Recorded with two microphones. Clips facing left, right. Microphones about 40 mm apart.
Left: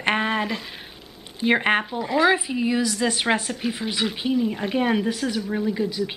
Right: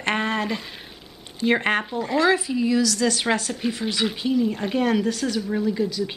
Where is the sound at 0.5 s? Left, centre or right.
Centre.